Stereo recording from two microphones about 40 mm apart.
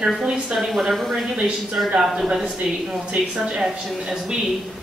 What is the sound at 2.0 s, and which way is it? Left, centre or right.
Speech, centre.